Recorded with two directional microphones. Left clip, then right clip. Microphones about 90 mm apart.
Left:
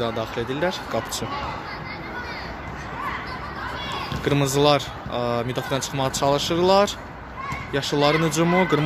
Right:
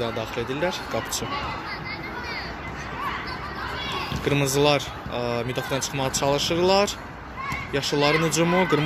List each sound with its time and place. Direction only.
0.2 s speech: 55° left (ahead or behind)
4.2 s speech: 55° left (ahead or behind); by 8.8 s 35° left (ahead or behind)